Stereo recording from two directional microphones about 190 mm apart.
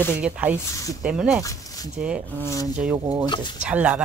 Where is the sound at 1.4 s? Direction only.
20° left (ahead or behind).